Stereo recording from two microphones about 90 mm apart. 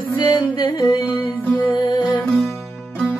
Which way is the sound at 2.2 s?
5° left (ahead or behind).